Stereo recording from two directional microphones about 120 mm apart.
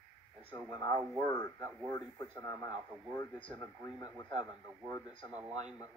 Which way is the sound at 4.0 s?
35° left (ahead or behind).